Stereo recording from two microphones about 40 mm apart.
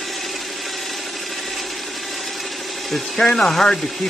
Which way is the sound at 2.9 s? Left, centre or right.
Centre.